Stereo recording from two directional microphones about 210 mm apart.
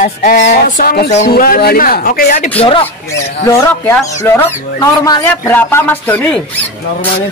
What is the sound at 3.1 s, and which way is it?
Speech, 10° left (ahead or behind).